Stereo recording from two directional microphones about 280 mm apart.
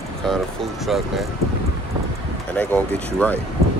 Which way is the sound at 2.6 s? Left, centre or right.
Centre.